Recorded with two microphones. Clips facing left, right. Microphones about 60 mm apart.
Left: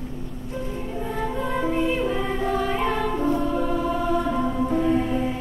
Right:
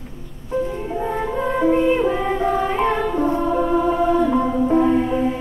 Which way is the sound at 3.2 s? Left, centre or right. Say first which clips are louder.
Right 5 dB; right.